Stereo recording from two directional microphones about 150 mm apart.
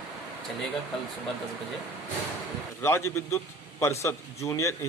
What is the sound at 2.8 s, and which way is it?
A man's voice, 15° left (ahead or behind).